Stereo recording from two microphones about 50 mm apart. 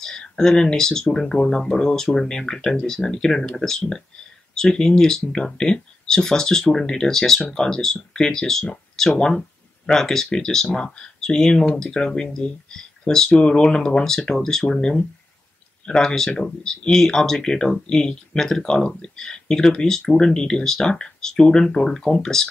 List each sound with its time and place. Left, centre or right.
0.0 s speech: centre
9.8 s speech: centre